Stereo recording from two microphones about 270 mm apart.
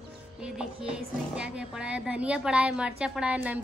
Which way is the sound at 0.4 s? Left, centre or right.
Centre.